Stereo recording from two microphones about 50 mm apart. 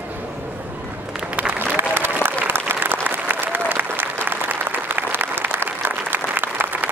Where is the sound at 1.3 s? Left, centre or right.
Right.